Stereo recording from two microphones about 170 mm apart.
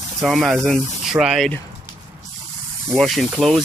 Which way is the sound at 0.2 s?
Centre (ahead or behind).